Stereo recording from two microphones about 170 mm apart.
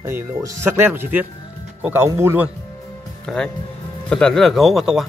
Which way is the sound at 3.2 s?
5° left (ahead or behind).